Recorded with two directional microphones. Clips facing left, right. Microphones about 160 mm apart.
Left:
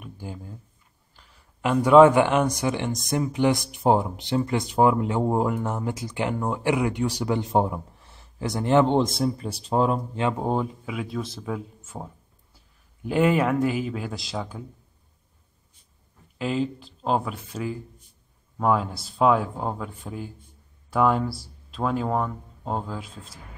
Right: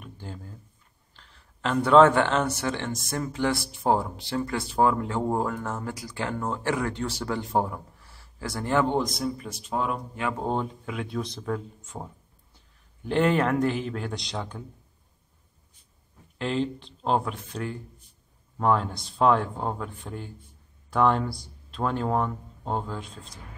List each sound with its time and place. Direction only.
0.0 s a sound: 10° left (ahead or behind)
1.1 s speech: 10° left (ahead or behind); by 10.3 s 30° left (ahead or behind)
10.4 s speech: 5° left (ahead or behind)
16.3 s speech: 5° left (ahead or behind)